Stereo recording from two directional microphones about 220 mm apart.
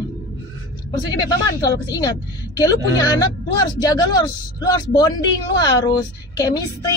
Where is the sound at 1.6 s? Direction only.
15° left (ahead or behind).